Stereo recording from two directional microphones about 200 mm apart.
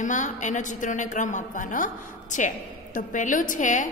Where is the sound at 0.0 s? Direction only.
40° left (ahead or behind).